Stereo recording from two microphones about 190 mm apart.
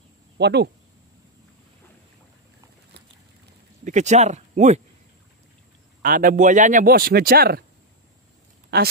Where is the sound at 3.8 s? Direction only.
40° right (ahead or behind).